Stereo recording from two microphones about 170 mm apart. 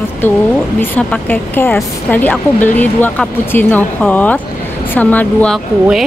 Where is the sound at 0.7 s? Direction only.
10° left (ahead or behind).